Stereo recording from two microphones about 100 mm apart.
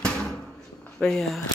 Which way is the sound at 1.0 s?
5° left (ahead or behind).